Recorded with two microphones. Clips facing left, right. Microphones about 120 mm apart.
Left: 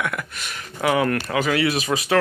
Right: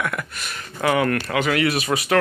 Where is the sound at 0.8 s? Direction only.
15° left (ahead or behind).